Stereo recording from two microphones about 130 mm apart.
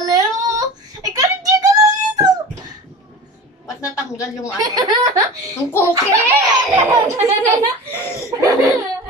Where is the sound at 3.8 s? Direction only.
25° left (ahead or behind).